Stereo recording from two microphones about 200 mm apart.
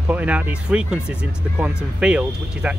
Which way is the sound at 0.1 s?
10° right (ahead or behind).